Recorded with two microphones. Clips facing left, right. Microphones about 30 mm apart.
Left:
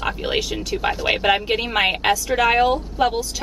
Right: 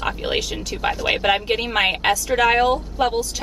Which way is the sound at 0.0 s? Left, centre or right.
Centre.